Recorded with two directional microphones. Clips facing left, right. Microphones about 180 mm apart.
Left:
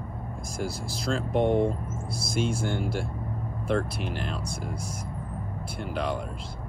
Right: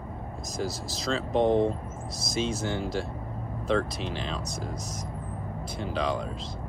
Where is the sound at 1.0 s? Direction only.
10° left (ahead or behind).